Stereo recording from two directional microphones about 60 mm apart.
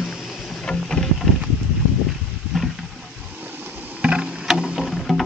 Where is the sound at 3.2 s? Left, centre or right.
Right.